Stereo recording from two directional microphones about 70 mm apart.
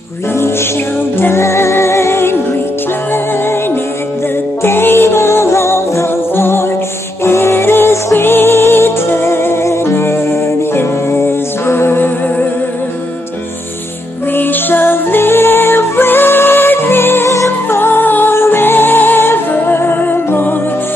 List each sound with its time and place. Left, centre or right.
1.2 s music: left
4.6 s music: left
14.3 s music: left